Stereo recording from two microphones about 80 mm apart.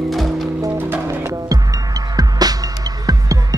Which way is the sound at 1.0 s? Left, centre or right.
Right.